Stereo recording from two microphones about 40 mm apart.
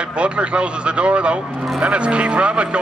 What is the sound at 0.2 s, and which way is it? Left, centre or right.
Speech, right.